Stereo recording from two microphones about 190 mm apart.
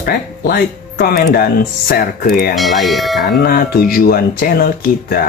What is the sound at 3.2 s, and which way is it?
Speech, 55° left (ahead or behind).